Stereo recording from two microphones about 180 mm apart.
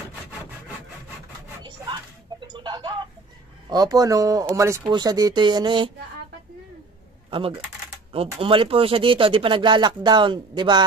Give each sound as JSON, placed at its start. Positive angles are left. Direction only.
{"t": 2.4, "sound": "music", "side_deg": -25}
{"t": 3.7, "sound": "speech", "side_deg": -20}
{"t": 7.2, "sound": "speech", "side_deg": -30}